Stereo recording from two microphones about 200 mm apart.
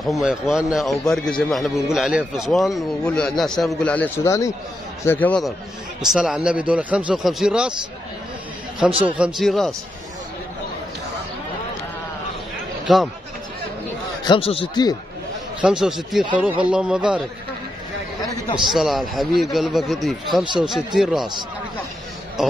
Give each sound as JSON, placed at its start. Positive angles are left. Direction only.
{"t": 0.0, "sound": "a man's voice", "side_deg": 0}
{"t": 9.0, "sound": "a man's voice", "side_deg": -5}
{"t": 12.8, "sound": "speech", "side_deg": 0}
{"t": 14.2, "sound": "speech", "side_deg": 25}
{"t": 15.6, "sound": "a man's voice", "side_deg": -5}
{"t": 18.7, "sound": "a man's voice", "side_deg": 0}
{"t": 22.4, "sound": "a sound", "side_deg": 0}